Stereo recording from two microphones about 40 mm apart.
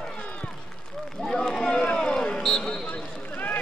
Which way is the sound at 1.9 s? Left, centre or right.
Centre.